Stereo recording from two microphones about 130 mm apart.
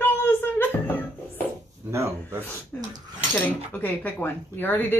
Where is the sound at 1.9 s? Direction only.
20° right (ahead or behind).